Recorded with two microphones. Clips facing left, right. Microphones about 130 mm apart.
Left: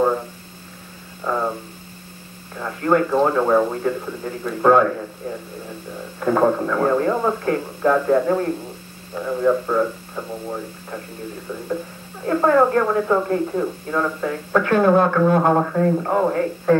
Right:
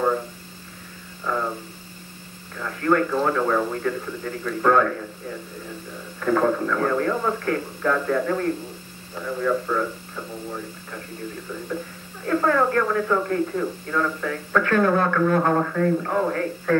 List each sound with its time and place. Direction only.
1.2 s mains hum: 25° left (ahead or behind)
2.5 s speech: 25° left (ahead or behind)
6.1 s speech: 25° left (ahead or behind)
12.3 s speech: 25° left (ahead or behind)